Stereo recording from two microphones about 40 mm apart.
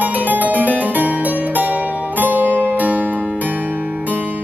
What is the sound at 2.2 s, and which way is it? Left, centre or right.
Music, right.